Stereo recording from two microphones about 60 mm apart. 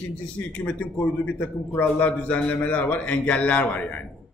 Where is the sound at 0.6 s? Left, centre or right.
Left.